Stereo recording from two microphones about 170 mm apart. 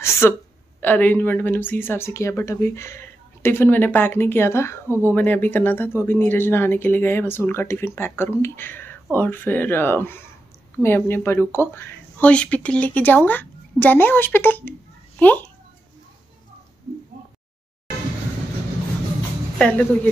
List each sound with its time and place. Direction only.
0.0 s a sound: 15° left (ahead or behind)
0.7 s speech: 10° left (ahead or behind)
4.8 s speech: 15° right (ahead or behind)
5.1 s a child's voice: 10° left (ahead or behind)
19.6 s speech: 5° left (ahead or behind)